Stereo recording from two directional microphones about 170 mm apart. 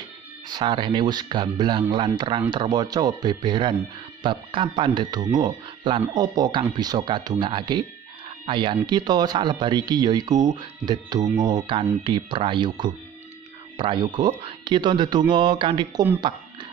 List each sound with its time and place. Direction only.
0.5 s speech: 25° right (ahead or behind)